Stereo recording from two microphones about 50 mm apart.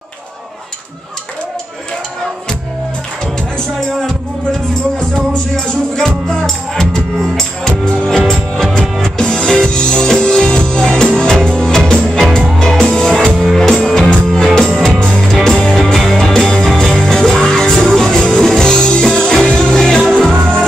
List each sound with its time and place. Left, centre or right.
5.9 s music: centre